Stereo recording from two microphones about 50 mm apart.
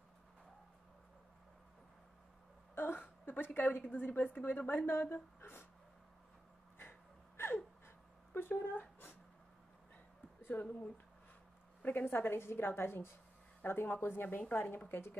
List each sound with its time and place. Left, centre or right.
2.7 s speech: left
6.8 s a sound: left
8.3 s speech: left
10.5 s a woman's voice: left
11.8 s a woman's voice: left